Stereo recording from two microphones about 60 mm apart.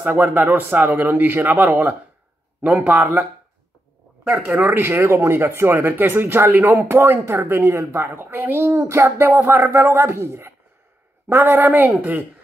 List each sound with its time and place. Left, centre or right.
0.1 s speech: right
4.3 s a woman's voice: right
9.3 s speech: right